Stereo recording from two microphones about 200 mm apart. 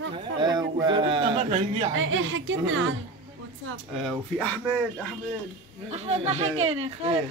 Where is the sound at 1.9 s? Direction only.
70° right (ahead or behind).